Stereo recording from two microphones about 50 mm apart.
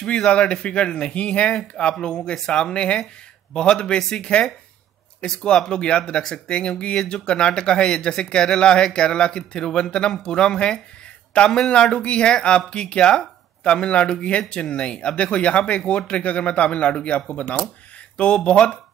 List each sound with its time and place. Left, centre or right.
0.0 s speech: left